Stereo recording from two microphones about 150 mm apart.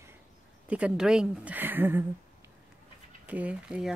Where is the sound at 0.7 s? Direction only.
5° right (ahead or behind).